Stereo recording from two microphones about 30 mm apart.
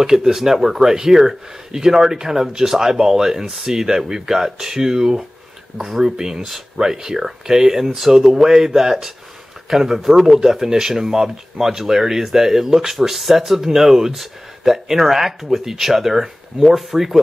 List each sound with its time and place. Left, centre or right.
0.0 s speech: centre
6.1 s speech: right